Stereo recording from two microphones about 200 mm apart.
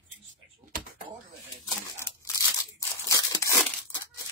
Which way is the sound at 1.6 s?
15° left (ahead or behind).